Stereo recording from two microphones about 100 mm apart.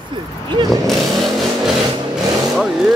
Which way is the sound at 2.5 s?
5° right (ahead or behind).